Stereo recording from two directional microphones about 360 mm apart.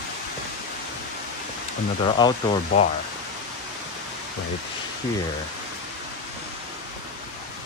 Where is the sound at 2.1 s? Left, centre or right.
Centre.